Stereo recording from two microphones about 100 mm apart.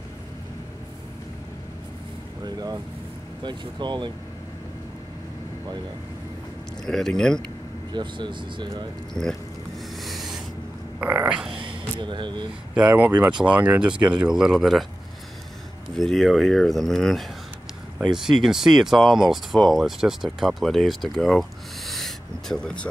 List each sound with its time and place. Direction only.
2.4 s speech: 40° right (ahead or behind)
6.8 s speech: 5° left (ahead or behind)
7.9 s speech: 50° right (ahead or behind)
9.1 s speech: 10° left (ahead or behind)
9.8 s a sound: centre (ahead or behind)
11.0 s speech: 15° right (ahead or behind)
11.6 s speech: 55° right (ahead or behind)
12.7 s speech: 15° right (ahead or behind)
16.0 s speech: 5° left (ahead or behind)